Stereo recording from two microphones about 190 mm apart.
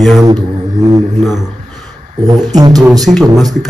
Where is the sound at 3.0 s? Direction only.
Centre (ahead or behind).